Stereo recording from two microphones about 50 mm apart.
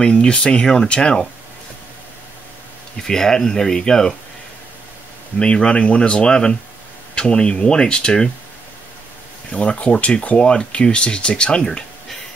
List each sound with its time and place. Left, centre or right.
0.0 s speech: centre
3.0 s speech: centre
5.4 s speech: centre
9.5 s speech: left
11.6 s a sound: centre